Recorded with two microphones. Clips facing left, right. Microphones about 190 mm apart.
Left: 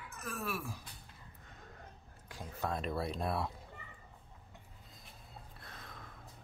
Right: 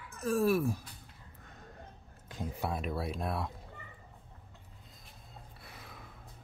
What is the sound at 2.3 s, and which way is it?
Speech, 15° right (ahead or behind).